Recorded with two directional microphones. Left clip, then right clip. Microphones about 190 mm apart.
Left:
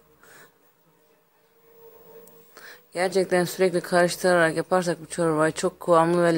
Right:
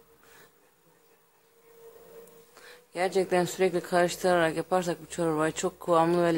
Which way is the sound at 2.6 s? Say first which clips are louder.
Left 4 dB; 20° left (ahead or behind).